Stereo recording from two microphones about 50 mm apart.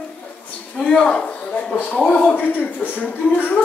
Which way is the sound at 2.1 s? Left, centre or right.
Left.